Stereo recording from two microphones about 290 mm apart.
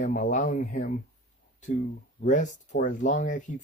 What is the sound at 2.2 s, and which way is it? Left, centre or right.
Speech, left.